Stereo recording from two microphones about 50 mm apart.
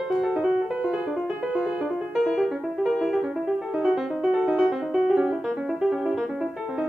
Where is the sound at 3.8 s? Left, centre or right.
Centre.